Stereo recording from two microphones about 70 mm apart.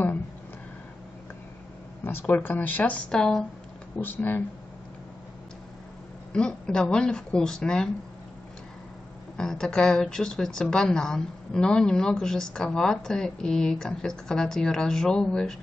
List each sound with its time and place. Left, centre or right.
2.0 s speech: left
3.1 s a woman's voice: centre
4.0 s speech: left
6.3 s a woman's voice: centre
9.4 s a woman's voice: centre